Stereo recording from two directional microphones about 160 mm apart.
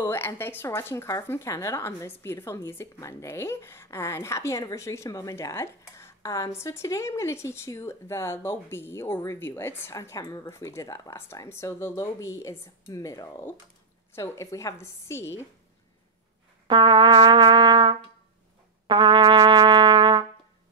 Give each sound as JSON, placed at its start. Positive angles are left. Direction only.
{"t": 0.0, "sound": "speech", "side_deg": 15}
{"t": 16.6, "sound": "brass instrument", "side_deg": -30}
{"t": 18.9, "sound": "trumpet", "side_deg": -30}